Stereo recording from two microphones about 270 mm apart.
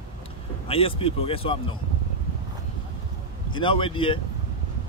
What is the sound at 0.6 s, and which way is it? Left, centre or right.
Speech, left.